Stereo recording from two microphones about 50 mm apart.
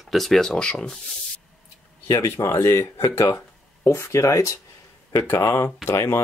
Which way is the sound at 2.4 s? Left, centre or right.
Left.